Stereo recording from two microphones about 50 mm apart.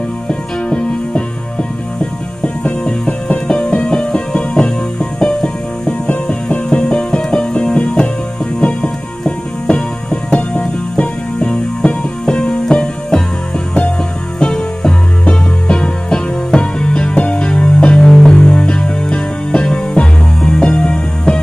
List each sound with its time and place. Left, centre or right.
0.3 s music: centre
6.5 s music: centre
14.4 s music: centre